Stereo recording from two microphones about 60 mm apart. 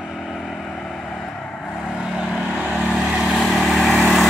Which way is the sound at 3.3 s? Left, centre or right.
Centre.